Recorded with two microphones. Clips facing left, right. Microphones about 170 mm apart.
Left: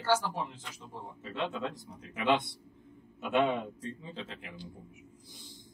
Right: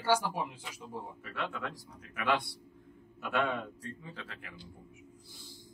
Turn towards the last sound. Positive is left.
turn(degrees=20)  # may be behind; listen again after turning